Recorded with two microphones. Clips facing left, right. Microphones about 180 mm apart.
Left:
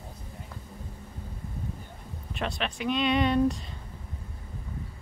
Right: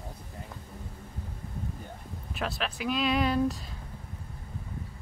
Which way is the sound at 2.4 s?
Centre (ahead or behind).